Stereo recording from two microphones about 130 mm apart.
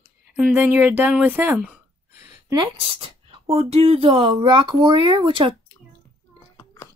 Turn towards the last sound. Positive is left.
turn(degrees=-40)  # may be behind; listen again after turning